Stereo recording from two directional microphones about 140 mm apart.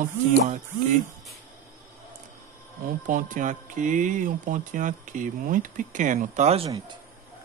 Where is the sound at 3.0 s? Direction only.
70° right (ahead or behind).